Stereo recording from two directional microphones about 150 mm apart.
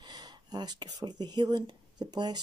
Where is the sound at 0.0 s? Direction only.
25° right (ahead or behind).